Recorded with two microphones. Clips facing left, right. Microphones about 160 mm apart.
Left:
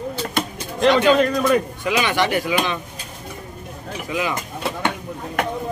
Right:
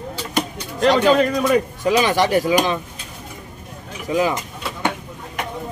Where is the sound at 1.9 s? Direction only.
35° right (ahead or behind).